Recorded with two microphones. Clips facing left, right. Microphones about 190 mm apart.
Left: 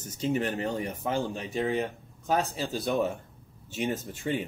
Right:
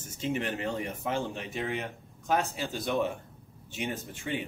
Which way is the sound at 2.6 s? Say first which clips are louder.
Left 2 dB; 35° left (ahead or behind).